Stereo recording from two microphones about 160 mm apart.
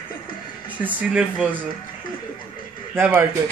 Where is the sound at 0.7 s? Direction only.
10° right (ahead or behind).